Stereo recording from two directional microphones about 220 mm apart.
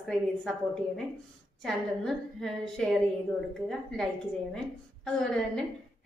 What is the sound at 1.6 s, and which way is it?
A woman's voice, centre (ahead or behind).